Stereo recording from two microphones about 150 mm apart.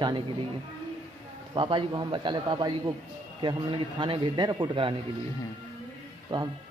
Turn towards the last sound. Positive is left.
turn(degrees=-30)  # may be behind; listen again after turning